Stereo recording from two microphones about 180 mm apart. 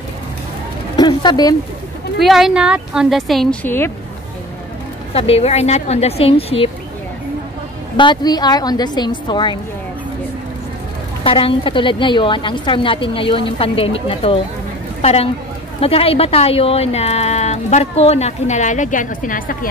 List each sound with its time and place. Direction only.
0.9 s speech: 25° left (ahead or behind)
2.1 s speech: centre (ahead or behind)
3.6 s speech: 10° left (ahead or behind)
5.1 s speech: 35° left (ahead or behind)
8.0 s a woman's voice: 25° left (ahead or behind)
11.2 s a woman's voice: 30° left (ahead or behind); by 19.7 s 50° left (ahead or behind)